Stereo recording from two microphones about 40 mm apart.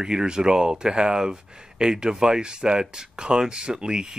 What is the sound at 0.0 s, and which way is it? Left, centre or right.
Speech, centre.